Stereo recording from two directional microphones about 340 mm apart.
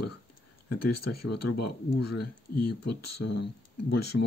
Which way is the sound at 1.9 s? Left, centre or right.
Left.